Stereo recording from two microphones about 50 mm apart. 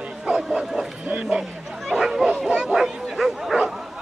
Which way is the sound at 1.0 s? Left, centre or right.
Right.